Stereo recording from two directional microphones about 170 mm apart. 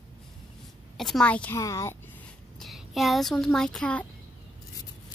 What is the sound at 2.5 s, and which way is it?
Speech, centre (ahead or behind).